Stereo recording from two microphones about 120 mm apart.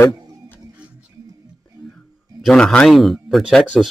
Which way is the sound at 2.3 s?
5° left (ahead or behind).